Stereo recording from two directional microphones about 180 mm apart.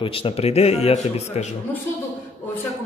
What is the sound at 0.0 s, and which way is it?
A man's voice, 30° left (ahead or behind).